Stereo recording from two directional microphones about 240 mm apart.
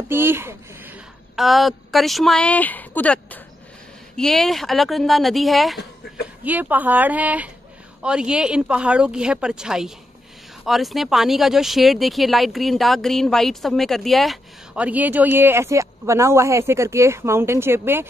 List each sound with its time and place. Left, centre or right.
0.1 s a woman's voice: centre
6.0 s speech: left
6.4 s a woman's voice: centre